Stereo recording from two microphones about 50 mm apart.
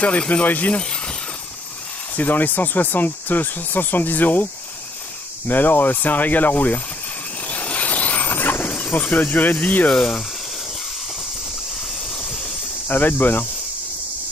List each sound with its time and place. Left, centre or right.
0.3 s speech: left
2.1 s speech: left
5.5 s speech: left
7.4 s vehicle: left
8.7 s speech: left
9.9 s speech: centre
12.2 s a sound: centre
12.8 s speech: left